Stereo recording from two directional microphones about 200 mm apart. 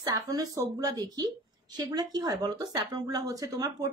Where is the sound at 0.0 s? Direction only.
20° right (ahead or behind).